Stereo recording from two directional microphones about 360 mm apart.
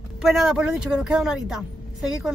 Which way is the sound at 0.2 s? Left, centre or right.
Centre.